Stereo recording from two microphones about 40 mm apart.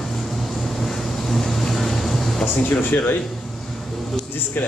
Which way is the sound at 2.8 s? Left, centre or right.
Left.